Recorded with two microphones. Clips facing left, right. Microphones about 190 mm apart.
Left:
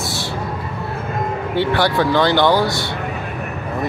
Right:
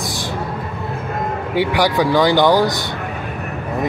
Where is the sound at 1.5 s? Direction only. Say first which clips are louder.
Right 1 dB; 15° right (ahead or behind).